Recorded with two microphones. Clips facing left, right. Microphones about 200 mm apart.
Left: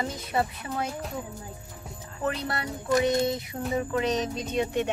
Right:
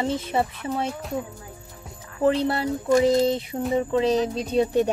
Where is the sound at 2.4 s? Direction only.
25° right (ahead or behind).